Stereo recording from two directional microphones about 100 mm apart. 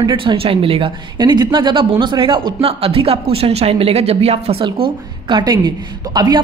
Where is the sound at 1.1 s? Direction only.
45° right (ahead or behind); by 4.6 s 85° right.